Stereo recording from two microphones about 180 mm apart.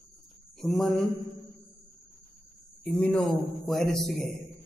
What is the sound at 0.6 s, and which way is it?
Speech, centre (ahead or behind).